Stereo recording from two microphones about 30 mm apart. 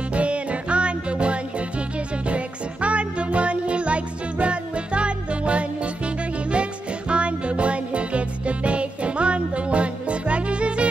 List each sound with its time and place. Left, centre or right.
0.1 s music: right